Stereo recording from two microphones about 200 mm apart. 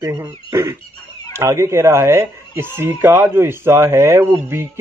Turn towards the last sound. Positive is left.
turn(degrees=-15)  # may be behind; listen again after turning